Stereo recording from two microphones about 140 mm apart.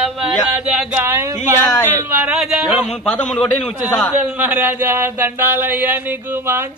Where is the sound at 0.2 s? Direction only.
5° right (ahead or behind).